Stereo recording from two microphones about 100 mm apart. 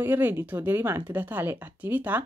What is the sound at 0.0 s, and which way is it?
Speech, 20° right (ahead or behind).